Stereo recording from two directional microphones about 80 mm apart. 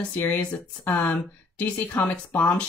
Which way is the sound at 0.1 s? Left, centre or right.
Left.